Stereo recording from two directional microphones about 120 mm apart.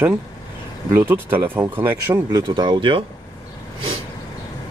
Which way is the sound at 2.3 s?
35° right (ahead or behind).